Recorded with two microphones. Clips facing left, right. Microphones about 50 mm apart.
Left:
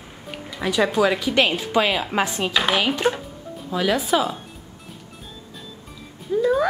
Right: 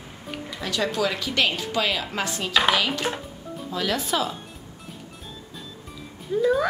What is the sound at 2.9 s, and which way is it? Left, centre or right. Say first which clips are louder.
Speech: left 6 dB; centre.